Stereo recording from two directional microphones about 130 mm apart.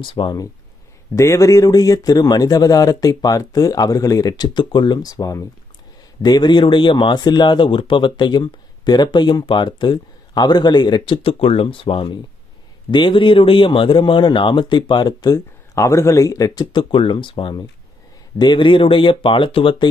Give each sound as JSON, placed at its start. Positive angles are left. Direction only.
{"t": 0.0, "sound": "speech", "side_deg": 40}
{"t": 1.1, "sound": "speech", "side_deg": 25}
{"t": 16.9, "sound": "speech", "side_deg": 40}